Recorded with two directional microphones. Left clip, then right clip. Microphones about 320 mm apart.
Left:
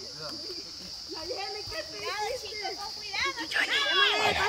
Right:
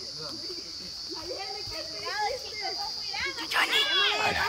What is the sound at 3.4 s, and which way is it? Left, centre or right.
Children playing, centre.